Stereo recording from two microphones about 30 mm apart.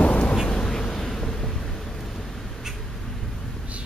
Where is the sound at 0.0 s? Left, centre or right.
Left.